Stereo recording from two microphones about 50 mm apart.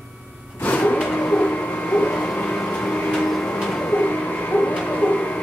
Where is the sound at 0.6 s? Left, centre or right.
Left.